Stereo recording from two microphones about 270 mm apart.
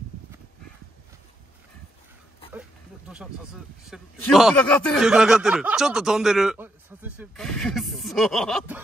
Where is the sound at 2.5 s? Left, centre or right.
Centre.